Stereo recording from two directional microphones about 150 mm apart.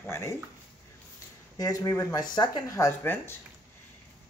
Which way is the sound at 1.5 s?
25° left (ahead or behind).